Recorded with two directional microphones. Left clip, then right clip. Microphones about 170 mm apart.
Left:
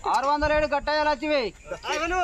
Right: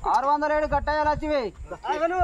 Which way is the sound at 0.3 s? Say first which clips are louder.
Even; 5° right (ahead or behind).